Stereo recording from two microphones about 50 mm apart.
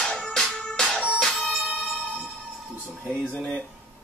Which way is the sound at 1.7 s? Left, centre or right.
Centre.